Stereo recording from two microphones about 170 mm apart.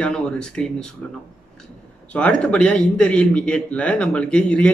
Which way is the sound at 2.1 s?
5° left (ahead or behind).